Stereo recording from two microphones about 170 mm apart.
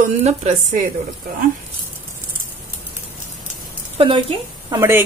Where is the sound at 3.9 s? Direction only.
35° right (ahead or behind).